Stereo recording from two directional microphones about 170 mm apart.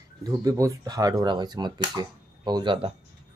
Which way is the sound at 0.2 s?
20° right (ahead or behind).